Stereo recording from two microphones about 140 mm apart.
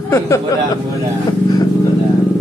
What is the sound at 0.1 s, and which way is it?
Speech, 20° left (ahead or behind).